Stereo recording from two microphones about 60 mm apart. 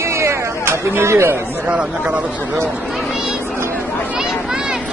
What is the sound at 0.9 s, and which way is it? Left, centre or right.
Speech, right.